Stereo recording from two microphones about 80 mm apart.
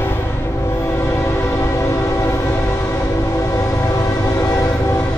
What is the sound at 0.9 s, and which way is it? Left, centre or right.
Train, left.